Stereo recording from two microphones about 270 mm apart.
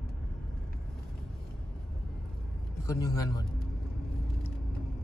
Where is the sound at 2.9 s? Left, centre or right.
Centre.